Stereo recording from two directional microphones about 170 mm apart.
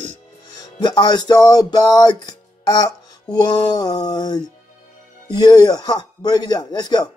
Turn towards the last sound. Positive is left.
turn(degrees=25)  # may be behind; listen again after turning